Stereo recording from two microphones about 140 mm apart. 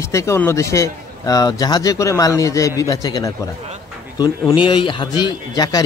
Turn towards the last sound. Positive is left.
turn(degrees=30)  # may be behind; listen again after turning